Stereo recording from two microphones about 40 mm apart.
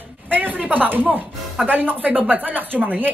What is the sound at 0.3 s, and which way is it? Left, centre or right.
Speech, right.